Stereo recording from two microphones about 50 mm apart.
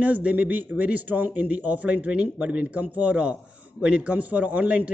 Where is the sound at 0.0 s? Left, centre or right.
Right.